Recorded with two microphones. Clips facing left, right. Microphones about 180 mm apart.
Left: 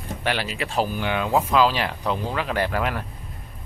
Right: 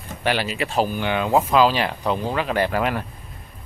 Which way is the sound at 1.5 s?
5° right (ahead or behind).